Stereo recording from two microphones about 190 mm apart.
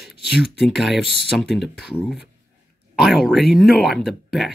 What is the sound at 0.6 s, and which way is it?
Speech, centre (ahead or behind).